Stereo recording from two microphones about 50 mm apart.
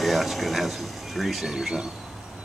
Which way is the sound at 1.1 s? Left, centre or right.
Centre.